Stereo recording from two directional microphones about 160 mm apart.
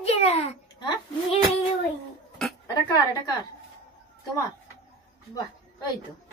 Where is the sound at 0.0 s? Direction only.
40° left (ahead or behind).